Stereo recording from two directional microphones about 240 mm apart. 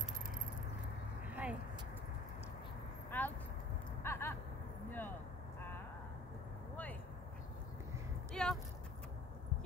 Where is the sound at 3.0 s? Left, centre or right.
Centre.